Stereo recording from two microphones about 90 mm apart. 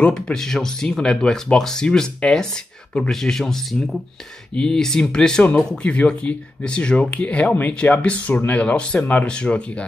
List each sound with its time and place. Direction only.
0.0 s speech: 5° left (ahead or behind)